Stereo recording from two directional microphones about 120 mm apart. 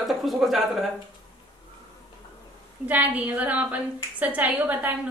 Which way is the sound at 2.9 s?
10° right (ahead or behind).